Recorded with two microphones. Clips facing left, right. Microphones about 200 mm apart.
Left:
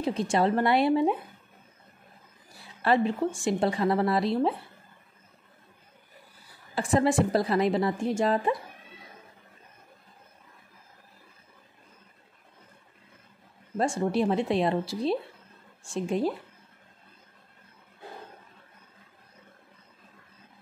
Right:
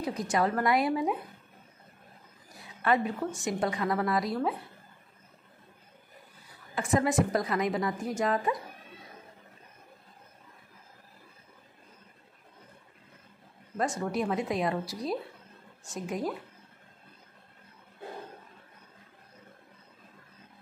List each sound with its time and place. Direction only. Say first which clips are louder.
0.0 s a woman's voice: left 3 dB; 25° left (ahead or behind)
2.5 s a woman's voice: left 3 dB; 30° left (ahead or behind)
6.7 s a woman's voice: left 3 dB; 30° left (ahead or behind)
13.7 s a woman's voice: left 4 dB; 30° left (ahead or behind)